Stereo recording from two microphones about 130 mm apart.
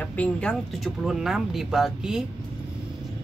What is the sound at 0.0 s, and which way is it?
Speech, 10° left (ahead or behind).